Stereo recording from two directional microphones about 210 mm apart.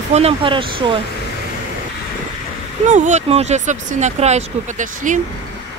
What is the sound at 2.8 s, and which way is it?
Speech, 35° right (ahead or behind).